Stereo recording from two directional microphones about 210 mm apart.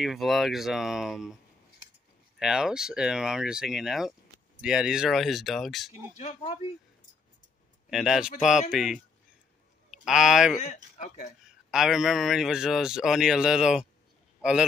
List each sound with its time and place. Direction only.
0.0 s a man's voice: centre (ahead or behind)
6.1 s speech: 30° left (ahead or behind)
7.9 s a man's voice: centre (ahead or behind)
10.7 s speech: 35° left (ahead or behind)
11.4 s a man's voice: centre (ahead or behind)